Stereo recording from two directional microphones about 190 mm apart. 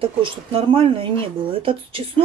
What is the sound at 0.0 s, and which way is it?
Speech, 30° right (ahead or behind).